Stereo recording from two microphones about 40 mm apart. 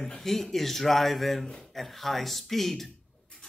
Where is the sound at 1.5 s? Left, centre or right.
Centre.